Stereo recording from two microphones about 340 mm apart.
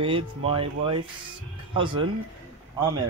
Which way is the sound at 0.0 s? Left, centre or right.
Centre.